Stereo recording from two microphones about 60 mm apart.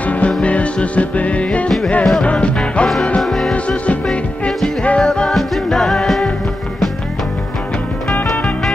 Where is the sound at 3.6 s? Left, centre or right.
Left.